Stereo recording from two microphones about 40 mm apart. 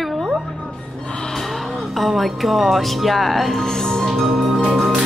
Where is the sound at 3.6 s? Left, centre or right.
Centre.